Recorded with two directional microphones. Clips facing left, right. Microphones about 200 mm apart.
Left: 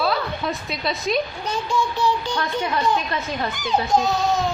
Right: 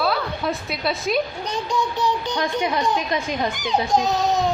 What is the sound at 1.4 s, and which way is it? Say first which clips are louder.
A child's voice: even; 20° right (ahead or behind).